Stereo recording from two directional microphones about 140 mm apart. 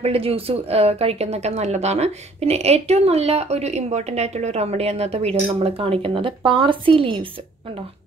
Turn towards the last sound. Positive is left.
turn(degrees=-40)  # may be behind; listen again after turning